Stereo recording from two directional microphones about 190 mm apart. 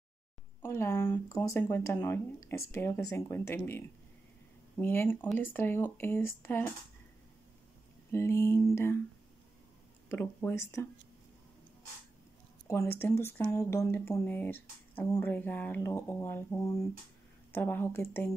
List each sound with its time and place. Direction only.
0.6 s speech: 15° left (ahead or behind)
8.1 s speech: 15° left (ahead or behind)
10.0 s speech: 10° left (ahead or behind)
12.6 s speech: 15° left (ahead or behind)